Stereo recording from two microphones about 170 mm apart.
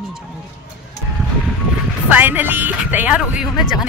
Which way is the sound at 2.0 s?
10° right (ahead or behind).